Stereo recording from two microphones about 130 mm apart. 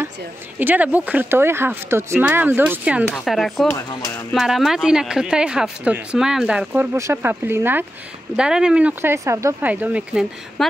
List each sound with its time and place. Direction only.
0.6 s speech: 15° right (ahead or behind)
3.6 s speech: 20° left (ahead or behind)
4.3 s speech: centre (ahead or behind); by 7.8 s 15° right (ahead or behind)
8.4 s speech: 5° right (ahead or behind)
10.6 s speech: centre (ahead or behind)